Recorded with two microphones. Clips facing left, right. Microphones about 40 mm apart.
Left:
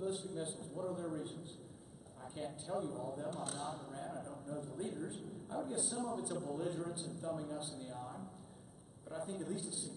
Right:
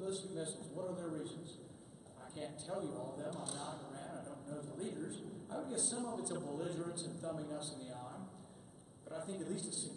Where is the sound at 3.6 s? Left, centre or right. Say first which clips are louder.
Left 3 dB; centre.